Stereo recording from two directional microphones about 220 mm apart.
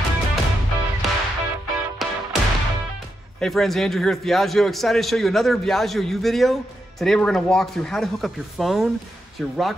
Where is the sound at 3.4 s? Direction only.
Centre (ahead or behind).